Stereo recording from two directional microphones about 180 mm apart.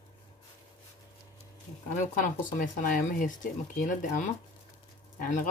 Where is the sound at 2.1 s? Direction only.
45° left (ahead or behind).